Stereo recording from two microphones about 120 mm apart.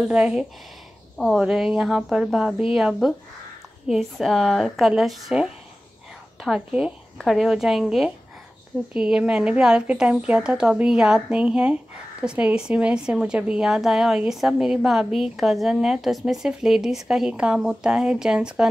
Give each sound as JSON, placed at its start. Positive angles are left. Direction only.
{"t": 0.0, "sound": "a woman's voice", "side_deg": -5}